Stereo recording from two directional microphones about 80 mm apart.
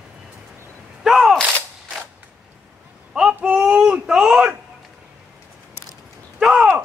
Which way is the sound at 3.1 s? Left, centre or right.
Centre.